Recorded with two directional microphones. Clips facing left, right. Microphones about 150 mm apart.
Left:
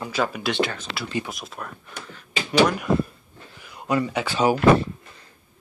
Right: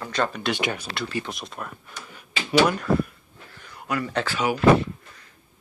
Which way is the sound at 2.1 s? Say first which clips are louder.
Right 2 dB; 5° right (ahead or behind).